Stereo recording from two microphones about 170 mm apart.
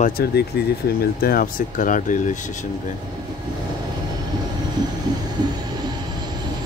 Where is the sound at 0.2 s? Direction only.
70° left (ahead or behind).